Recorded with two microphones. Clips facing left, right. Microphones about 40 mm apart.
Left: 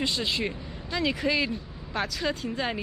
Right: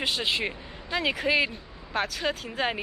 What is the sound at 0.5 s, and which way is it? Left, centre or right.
Speech, right.